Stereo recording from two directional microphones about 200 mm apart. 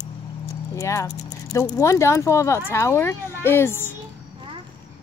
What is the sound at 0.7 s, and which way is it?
A woman's voice, 15° left (ahead or behind).